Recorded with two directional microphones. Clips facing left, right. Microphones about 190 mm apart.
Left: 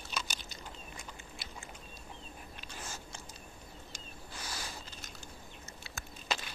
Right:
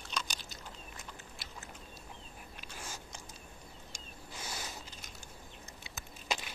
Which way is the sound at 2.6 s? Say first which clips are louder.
Even; 10° right (ahead or behind).